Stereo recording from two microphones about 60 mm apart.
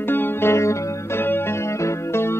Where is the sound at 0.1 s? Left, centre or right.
Left.